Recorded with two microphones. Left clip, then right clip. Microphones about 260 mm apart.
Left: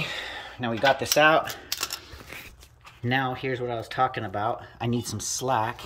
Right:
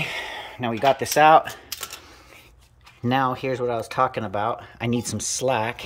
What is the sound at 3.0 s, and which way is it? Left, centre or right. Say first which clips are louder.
Speech: right 4 dB; centre.